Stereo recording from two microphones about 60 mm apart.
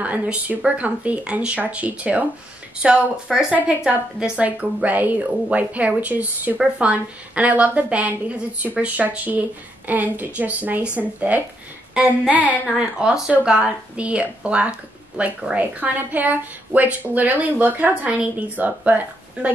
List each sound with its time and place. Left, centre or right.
0.0 s a woman's voice: right
12.6 s a woman's voice: centre